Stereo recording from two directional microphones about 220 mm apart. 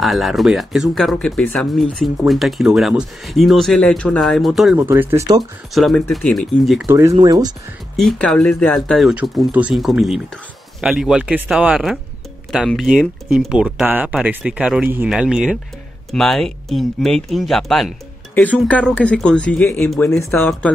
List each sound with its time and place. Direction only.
0.0 s speech: centre (ahead or behind)
5.8 s speech: centre (ahead or behind)
6.9 s speech: 15° right (ahead or behind)
7.9 s speech: centre (ahead or behind)